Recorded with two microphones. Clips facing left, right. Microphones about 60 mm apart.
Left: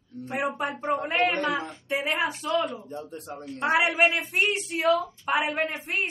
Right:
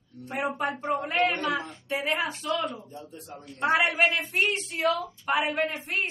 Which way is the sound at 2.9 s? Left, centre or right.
Left.